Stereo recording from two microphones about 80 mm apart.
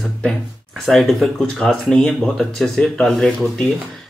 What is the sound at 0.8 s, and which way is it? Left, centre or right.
Speech, centre.